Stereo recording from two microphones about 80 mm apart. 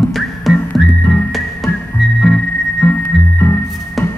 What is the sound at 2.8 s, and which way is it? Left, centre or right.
Music, left.